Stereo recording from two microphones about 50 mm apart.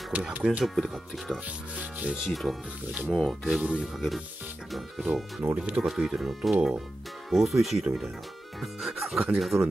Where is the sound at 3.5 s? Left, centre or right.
Centre.